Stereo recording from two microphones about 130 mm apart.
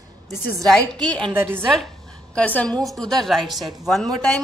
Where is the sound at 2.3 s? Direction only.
10° left (ahead or behind).